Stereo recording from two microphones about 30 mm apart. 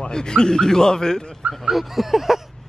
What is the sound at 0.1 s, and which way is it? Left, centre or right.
A man's voice, left.